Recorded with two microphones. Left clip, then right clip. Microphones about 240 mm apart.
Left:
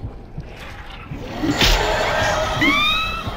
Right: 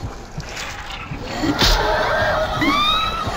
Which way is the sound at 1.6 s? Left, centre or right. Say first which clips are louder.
Even; centre.